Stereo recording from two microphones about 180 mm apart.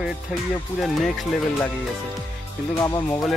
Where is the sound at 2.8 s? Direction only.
15° left (ahead or behind).